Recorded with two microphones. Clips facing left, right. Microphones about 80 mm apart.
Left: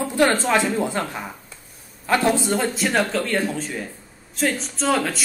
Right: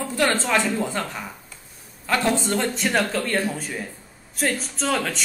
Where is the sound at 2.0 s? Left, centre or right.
Centre.